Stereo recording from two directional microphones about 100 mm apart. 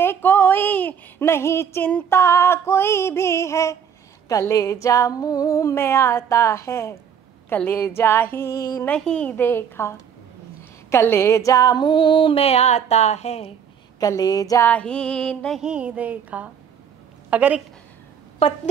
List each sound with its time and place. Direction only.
0.0 s speech: 20° left (ahead or behind)
2.0 s music: 25° left (ahead or behind)
4.3 s a sound: 35° left (ahead or behind)
7.4 s music: 20° left (ahead or behind)
9.4 s music: 20° left (ahead or behind)
10.9 s a sound: 25° left (ahead or behind); by 13.6 s 90° left
13.9 s a sound: 40° left (ahead or behind)
14.6 s music: 15° left (ahead or behind)
15.6 s a woman's voice: 10° right (ahead or behind)
18.4 s speech: 75° left (ahead or behind)